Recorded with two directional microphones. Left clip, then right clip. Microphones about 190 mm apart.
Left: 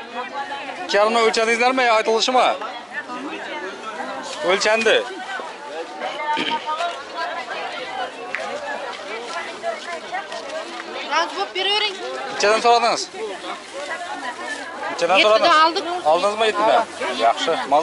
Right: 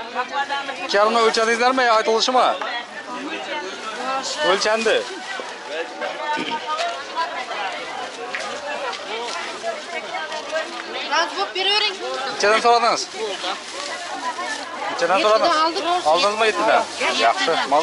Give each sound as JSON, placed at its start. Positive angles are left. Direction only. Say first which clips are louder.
{"t": 0.8, "sound": "speech", "louder": "even", "side_deg": 5}
{"t": 4.5, "sound": "speech", "louder": "left 2 dB", "side_deg": 5}
{"t": 6.3, "sound": "a sound", "louder": "left 3 dB", "side_deg": 0}
{"t": 11.1, "sound": "speech", "louder": "even", "side_deg": 0}
{"t": 14.9, "sound": "speech", "louder": "left 2 dB", "side_deg": 5}